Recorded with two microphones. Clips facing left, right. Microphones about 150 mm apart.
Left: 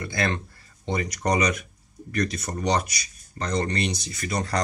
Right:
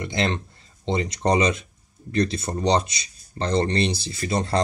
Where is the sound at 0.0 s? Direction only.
20° right (ahead or behind).